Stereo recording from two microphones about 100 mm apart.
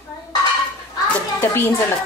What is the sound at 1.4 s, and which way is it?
Speech, 25° left (ahead or behind).